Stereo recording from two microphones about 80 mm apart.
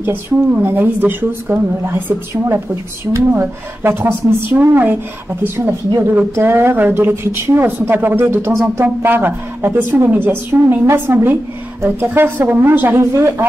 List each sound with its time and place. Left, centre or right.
0.0 s speech: right
2.4 s speech: right